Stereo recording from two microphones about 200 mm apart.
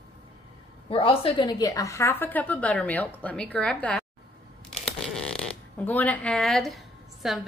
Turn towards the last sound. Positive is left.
turn(degrees=0)  # may be behind; listen again after turning